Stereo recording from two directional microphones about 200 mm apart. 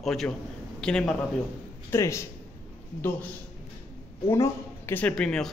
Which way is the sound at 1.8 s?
15° left (ahead or behind).